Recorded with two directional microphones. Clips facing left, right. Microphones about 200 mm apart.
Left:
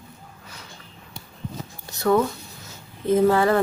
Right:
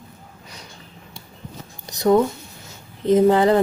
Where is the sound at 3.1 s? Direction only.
20° right (ahead or behind).